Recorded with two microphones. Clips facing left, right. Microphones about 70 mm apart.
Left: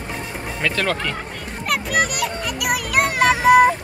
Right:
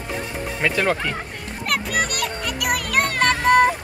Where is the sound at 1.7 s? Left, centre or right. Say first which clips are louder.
Left 2 dB; centre.